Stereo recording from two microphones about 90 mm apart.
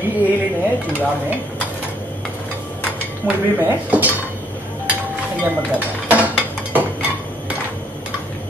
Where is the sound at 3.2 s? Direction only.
20° right (ahead or behind).